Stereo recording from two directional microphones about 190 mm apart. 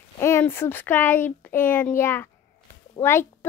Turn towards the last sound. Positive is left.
turn(degrees=15)  # may be behind; listen again after turning